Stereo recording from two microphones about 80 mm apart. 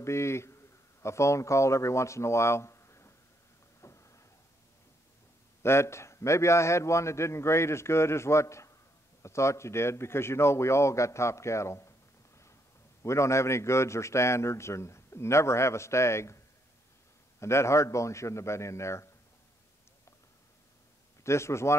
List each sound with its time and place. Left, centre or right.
0.0 s a man's voice: left
3.8 s a sound: left
5.6 s a man's voice: left
13.0 s a man's voice: left
17.4 s a man's voice: left
21.2 s a man's voice: left